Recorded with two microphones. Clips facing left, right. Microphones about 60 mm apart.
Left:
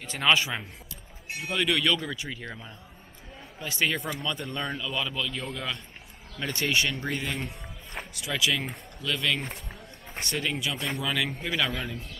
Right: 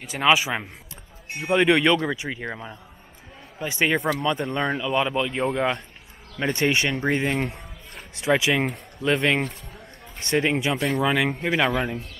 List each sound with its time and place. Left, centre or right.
0.0 s a man's voice: centre
1.4 s speech: right
7.3 s speech: right
8.2 s speech: right